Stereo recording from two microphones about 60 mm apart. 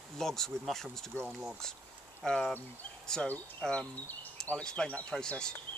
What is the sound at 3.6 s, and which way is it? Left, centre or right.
Speech, centre.